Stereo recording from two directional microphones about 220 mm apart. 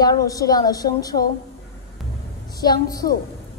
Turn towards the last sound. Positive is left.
turn(degrees=15)  # may be behind; listen again after turning